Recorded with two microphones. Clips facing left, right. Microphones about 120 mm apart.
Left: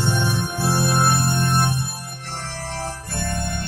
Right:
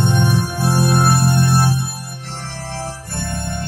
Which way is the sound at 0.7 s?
40° right (ahead or behind).